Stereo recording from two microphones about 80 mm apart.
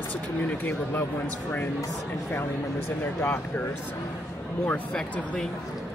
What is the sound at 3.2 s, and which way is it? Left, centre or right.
Speech, centre.